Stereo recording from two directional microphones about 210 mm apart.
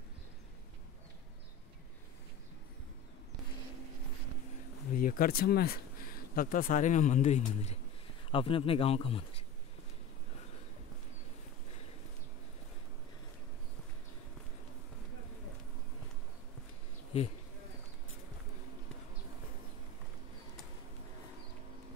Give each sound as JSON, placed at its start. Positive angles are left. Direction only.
{"t": 4.9, "sound": "a man's voice", "side_deg": 40}